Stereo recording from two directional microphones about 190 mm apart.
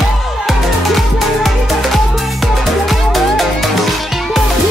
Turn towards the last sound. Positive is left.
turn(degrees=0)  # may be behind; listen again after turning